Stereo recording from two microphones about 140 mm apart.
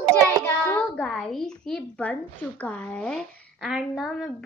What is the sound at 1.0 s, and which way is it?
A woman's voice, 5° left (ahead or behind).